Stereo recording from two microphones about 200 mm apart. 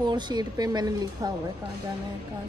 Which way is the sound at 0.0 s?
20° right (ahead or behind).